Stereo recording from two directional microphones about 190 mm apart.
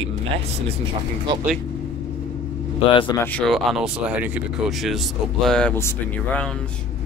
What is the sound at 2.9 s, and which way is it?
Speech, 25° left (ahead or behind).